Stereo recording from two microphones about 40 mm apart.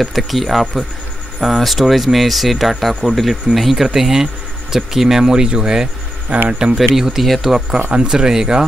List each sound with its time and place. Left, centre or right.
0.0 s speech: centre
6.3 s speech: right
6.8 s speech: centre